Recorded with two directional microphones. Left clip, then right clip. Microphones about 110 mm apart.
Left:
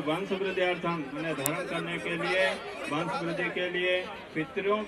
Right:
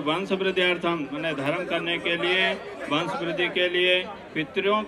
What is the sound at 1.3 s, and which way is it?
A man's voice, 15° left (ahead or behind).